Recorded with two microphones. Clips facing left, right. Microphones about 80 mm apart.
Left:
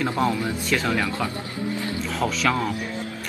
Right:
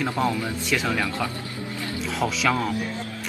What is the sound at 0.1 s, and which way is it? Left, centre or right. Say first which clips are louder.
A man's voice: left 1 dB; centre.